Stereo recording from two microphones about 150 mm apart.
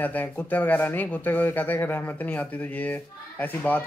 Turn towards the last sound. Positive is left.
turn(degrees=10)  # may be behind; listen again after turning